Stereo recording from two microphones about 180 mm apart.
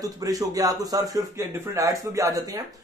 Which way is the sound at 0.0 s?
20° right (ahead or behind).